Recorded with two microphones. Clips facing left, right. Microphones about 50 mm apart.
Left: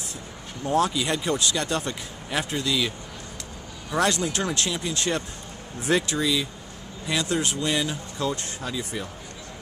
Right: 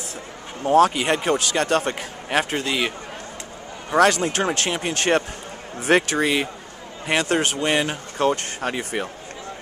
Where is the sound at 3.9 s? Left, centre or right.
Right.